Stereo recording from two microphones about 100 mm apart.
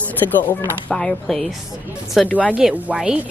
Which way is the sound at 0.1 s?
20° left (ahead or behind).